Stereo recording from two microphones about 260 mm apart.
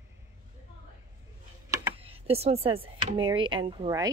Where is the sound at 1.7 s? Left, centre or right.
Right.